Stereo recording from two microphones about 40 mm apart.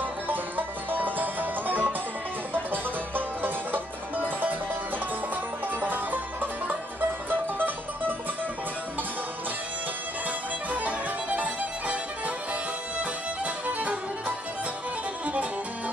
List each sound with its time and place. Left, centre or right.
0.0 s music: right
7.2 s music: right
10.7 s music: right
13.7 s music: right